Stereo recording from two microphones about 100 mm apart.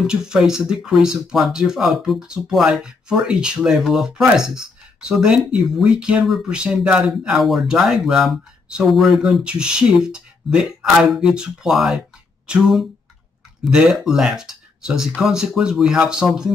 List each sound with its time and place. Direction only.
0.0 s speech: 5° right (ahead or behind)